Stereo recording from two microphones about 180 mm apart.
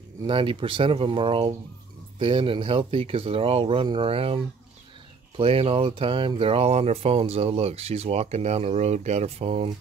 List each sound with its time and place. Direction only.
0.2 s speech: 30° right (ahead or behind)
5.4 s speech: 30° right (ahead or behind)